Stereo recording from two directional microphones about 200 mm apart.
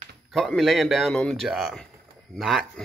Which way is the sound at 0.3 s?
Centre (ahead or behind).